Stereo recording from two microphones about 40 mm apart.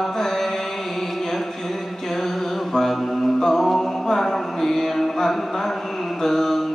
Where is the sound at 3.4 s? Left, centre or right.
Centre.